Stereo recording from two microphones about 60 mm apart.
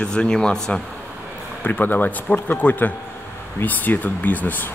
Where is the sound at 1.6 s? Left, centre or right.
Left.